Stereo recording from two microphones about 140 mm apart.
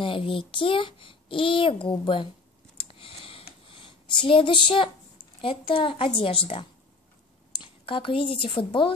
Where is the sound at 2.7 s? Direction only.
40° left (ahead or behind).